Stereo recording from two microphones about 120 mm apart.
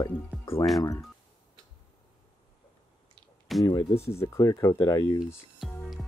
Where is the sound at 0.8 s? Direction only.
30° left (ahead or behind).